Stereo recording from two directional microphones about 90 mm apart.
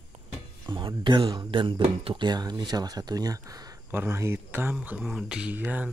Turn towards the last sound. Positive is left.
turn(degrees=-20)  # may be behind; listen again after turning